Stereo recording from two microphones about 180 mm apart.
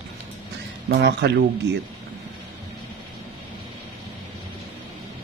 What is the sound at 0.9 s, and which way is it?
Speech, 70° right (ahead or behind).